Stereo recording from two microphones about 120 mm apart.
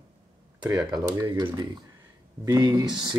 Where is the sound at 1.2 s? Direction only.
30° right (ahead or behind).